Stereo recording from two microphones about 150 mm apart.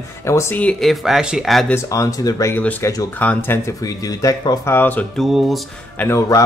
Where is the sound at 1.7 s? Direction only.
20° left (ahead or behind).